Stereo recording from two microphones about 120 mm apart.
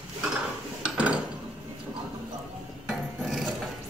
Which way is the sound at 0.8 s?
10° right (ahead or behind).